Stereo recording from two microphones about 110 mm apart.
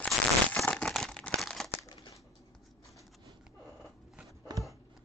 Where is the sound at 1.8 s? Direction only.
35° left (ahead or behind).